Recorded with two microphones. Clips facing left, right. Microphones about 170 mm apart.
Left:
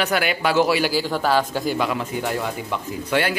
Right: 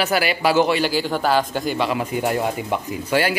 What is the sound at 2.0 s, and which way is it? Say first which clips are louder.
Speech: right 4 dB; 20° right (ahead or behind).